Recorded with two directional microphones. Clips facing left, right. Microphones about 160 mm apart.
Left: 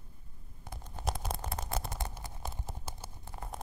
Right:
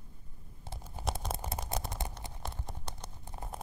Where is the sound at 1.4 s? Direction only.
15° right (ahead or behind).